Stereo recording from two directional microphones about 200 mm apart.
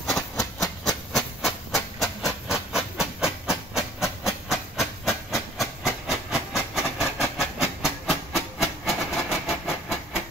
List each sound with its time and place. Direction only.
0.6 s steam: centre (ahead or behind)
6.0 s train: centre (ahead or behind)